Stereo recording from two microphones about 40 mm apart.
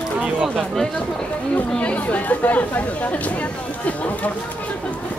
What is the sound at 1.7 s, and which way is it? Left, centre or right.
Speech, left.